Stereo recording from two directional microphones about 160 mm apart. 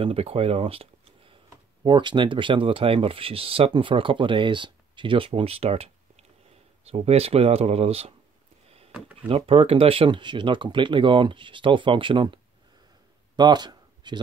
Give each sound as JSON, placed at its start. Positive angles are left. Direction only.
{"t": 0.0, "sound": "speech", "side_deg": -35}
{"t": 6.9, "sound": "speech", "side_deg": -40}
{"t": 8.6, "sound": "a sound", "side_deg": -40}
{"t": 9.3, "sound": "speech", "side_deg": -35}
{"t": 13.4, "sound": "speech", "side_deg": -25}